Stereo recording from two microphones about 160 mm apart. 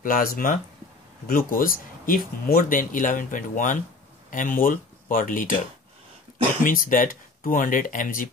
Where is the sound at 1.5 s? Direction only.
60° left (ahead or behind).